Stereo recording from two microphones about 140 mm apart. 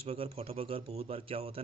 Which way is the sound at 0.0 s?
45° right (ahead or behind).